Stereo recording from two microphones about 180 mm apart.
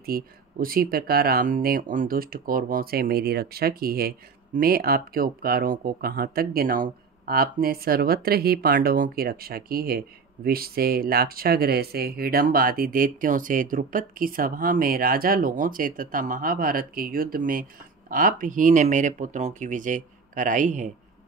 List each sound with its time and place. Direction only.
0.0 s speech: 55° right (ahead or behind)